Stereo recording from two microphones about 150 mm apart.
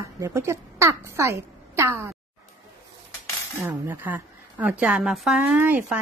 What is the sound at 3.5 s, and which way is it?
A woman's voice, 15° right (ahead or behind).